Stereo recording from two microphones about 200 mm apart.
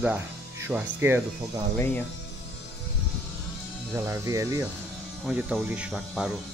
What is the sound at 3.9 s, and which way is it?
Speech, 15° right (ahead or behind).